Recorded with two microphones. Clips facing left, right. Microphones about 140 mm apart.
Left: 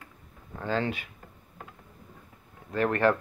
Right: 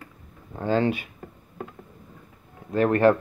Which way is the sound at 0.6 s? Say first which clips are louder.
Right 7 dB; 20° right (ahead or behind).